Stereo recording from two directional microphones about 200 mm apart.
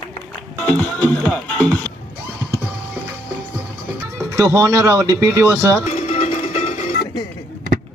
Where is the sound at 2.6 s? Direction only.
10° right (ahead or behind).